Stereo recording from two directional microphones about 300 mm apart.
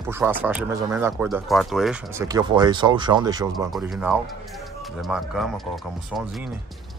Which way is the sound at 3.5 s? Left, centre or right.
Centre.